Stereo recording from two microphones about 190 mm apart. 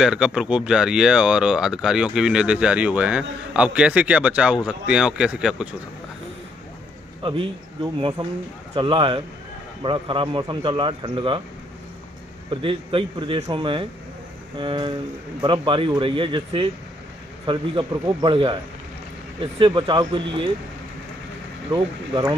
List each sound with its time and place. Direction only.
0.0 s speech: 5° right (ahead or behind)
7.2 s a man's voice: 25° right (ahead or behind)
12.4 s a man's voice: 25° right (ahead or behind)
21.7 s a man's voice: 25° right (ahead or behind)